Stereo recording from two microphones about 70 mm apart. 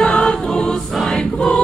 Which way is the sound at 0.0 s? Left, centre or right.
Centre.